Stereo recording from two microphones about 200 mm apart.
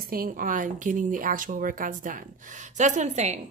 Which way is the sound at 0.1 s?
45° right (ahead or behind).